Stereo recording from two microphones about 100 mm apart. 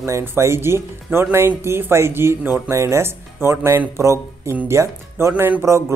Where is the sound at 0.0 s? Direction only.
25° right (ahead or behind).